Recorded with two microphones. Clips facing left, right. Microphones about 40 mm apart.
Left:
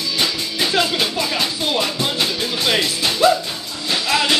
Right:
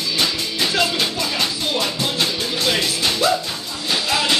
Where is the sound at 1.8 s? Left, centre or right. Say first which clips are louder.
Left 1 dB; centre.